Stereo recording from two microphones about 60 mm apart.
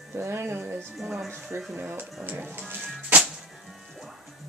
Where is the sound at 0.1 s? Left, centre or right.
Right.